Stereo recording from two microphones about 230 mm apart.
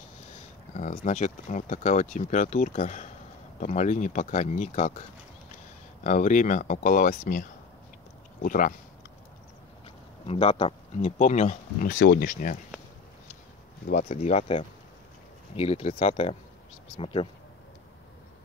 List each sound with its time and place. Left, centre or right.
0.7 s speech: left
6.0 s speech: left
10.2 s speech: left
13.8 s speech: left